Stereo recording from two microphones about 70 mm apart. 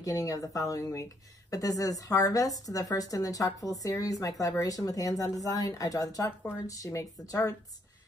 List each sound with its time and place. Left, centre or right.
0.0 s speech: left